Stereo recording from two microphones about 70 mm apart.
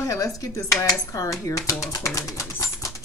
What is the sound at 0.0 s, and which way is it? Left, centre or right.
Speech, left.